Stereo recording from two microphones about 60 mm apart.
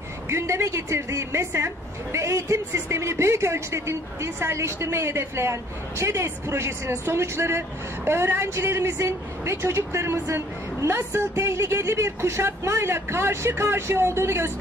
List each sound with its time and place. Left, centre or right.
0.3 s speech: right